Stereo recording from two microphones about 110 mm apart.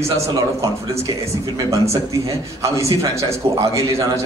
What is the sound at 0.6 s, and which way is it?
A man's voice, 30° right (ahead or behind).